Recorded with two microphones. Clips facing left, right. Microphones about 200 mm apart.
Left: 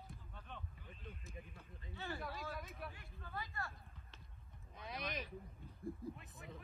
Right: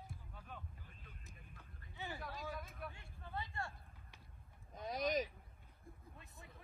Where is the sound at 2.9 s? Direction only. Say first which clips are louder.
Right 1 dB; 25° right (ahead or behind).